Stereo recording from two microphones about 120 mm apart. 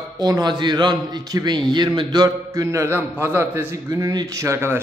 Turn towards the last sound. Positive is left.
turn(degrees=-20)  # may be behind; listen again after turning